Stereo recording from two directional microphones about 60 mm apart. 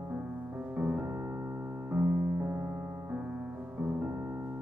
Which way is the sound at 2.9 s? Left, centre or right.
Right.